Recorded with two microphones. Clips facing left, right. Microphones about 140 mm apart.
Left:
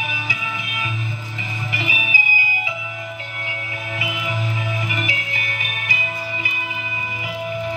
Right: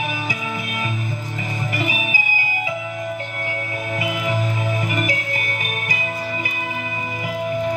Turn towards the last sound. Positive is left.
turn(degrees=-45)  # may be behind; listen again after turning